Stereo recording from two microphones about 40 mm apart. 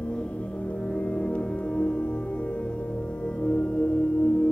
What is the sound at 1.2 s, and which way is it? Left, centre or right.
Music, left.